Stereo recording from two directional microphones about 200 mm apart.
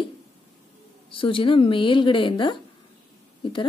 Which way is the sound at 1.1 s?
25° left (ahead or behind).